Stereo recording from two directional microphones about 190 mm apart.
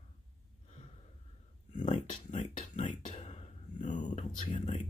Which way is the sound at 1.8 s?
40° left (ahead or behind).